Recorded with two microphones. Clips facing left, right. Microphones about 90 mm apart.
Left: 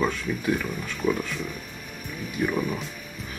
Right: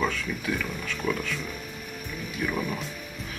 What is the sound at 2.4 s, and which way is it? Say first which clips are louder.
Speech: left 4 dB; 10° left (ahead or behind).